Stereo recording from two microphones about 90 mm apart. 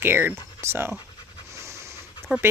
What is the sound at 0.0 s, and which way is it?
Speech, 25° right (ahead or behind).